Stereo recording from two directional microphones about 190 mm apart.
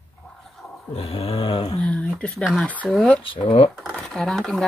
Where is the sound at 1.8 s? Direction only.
5° left (ahead or behind).